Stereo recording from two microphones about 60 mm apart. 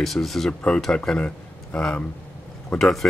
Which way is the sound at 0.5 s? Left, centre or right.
Left.